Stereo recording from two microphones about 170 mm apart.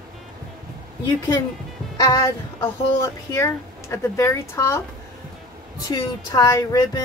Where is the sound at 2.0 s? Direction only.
20° left (ahead or behind).